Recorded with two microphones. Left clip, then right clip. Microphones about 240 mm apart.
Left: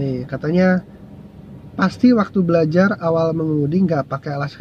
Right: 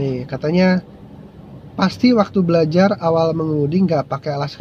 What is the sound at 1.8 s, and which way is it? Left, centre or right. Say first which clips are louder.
Speech: right 1 dB; right.